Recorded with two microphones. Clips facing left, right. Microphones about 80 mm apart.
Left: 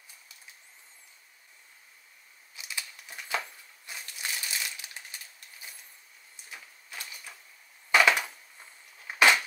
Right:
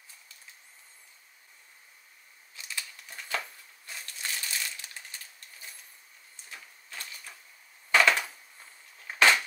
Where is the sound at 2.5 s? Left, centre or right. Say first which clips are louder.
Even; centre.